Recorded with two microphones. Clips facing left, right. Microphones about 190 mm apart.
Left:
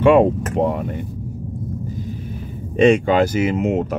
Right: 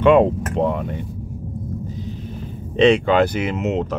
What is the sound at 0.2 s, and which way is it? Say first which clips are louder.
Speech: left 1 dB; 55° left (ahead or behind).